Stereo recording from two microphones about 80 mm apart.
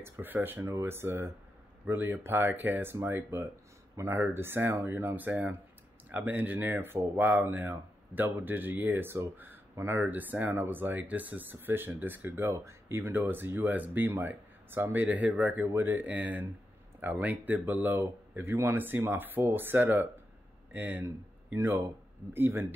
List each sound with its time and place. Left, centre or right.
0.0 s speech: right
0.6 s speech: right
21.5 s speech: right